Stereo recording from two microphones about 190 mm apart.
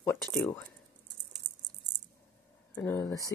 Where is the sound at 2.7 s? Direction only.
15° left (ahead or behind).